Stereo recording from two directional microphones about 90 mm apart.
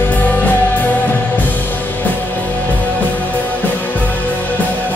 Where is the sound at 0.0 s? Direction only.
20° left (ahead or behind).